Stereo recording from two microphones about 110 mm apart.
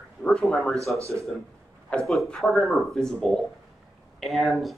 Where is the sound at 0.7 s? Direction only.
30° right (ahead or behind).